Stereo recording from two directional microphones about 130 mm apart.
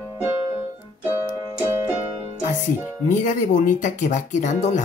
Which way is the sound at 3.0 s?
80° left.